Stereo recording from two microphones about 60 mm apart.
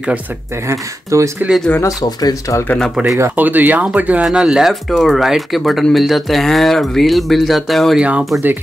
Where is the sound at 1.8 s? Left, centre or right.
Left.